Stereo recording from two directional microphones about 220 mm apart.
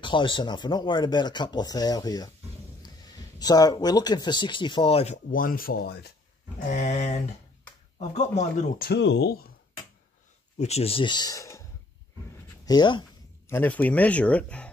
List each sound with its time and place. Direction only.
0.0 s speech: 20° left (ahead or behind); by 6.1 s 45° left (ahead or behind)
6.6 s speech: 30° left (ahead or behind)
10.6 s speech: 30° left (ahead or behind)
12.6 s speech: 20° left (ahead or behind)
13.5 s speech: 10° left (ahead or behind)